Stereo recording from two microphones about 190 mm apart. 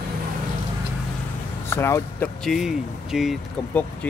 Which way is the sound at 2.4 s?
Centre (ahead or behind).